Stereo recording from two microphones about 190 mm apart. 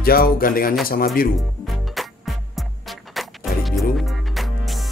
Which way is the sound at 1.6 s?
Centre (ahead or behind).